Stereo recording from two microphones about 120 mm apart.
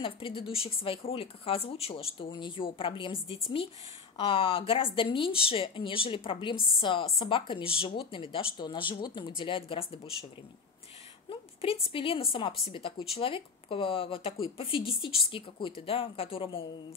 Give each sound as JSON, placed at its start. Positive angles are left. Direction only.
{"t": 0.0, "sound": "speech", "side_deg": 45}
{"t": 11.2, "sound": "a sound", "side_deg": 50}
{"t": 11.9, "sound": "speech", "side_deg": 50}